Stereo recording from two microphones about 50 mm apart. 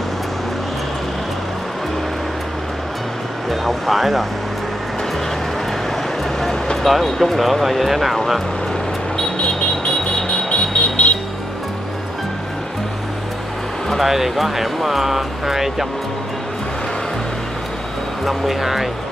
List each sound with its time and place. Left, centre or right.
3.4 s speech: centre
6.8 s speech: centre
9.1 s vehicle: centre; by 11.1 s left
13.8 s speech: centre
18.2 s speech: centre